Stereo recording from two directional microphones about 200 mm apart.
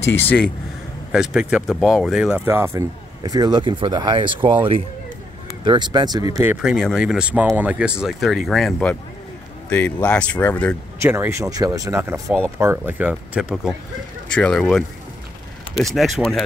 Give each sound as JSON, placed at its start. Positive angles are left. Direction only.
{"t": 0.0, "sound": "speech", "side_deg": 10}
{"t": 1.1, "sound": "speech", "side_deg": -5}
{"t": 5.7, "sound": "speech", "side_deg": -20}
{"t": 6.3, "sound": "speech", "side_deg": -10}
{"t": 11.0, "sound": "speech", "side_deg": -10}